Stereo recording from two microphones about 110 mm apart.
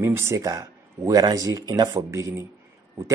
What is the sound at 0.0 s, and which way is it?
Speech, 25° right (ahead or behind).